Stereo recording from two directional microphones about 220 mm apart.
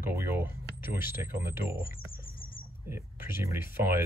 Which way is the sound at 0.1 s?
10° right (ahead or behind).